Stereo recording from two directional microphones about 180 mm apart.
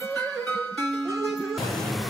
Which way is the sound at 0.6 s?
Centre (ahead or behind).